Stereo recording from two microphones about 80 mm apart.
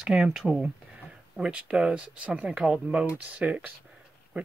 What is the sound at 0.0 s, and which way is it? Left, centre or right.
Speech, centre.